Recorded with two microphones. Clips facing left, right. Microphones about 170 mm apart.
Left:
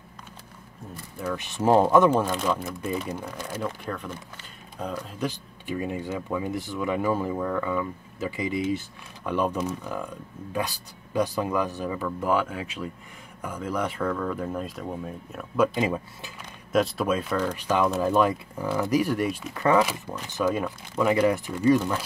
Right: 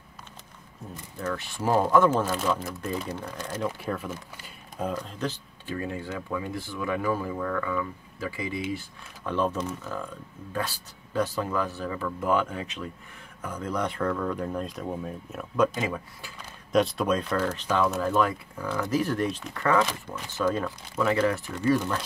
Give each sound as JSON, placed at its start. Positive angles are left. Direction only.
{"t": 1.2, "sound": "speech", "side_deg": 15}
{"t": 3.6, "sound": "speech", "side_deg": -5}
{"t": 4.9, "sound": "speech", "side_deg": 10}
{"t": 15.8, "sound": "speech", "side_deg": 20}
{"t": 16.7, "sound": "speech", "side_deg": 0}